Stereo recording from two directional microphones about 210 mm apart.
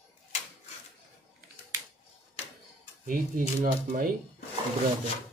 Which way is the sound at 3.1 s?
40° right (ahead or behind).